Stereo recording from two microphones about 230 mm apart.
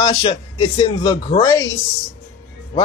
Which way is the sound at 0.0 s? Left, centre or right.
Centre.